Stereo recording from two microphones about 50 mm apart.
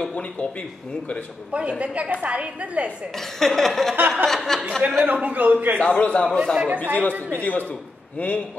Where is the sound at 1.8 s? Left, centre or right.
Right.